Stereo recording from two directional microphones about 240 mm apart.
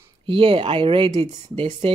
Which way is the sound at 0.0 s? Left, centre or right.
Right.